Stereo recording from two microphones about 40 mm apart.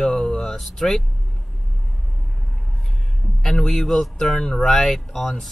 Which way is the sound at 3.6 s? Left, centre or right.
Centre.